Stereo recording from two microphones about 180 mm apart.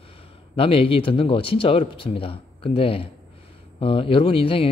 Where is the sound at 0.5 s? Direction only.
30° left (ahead or behind).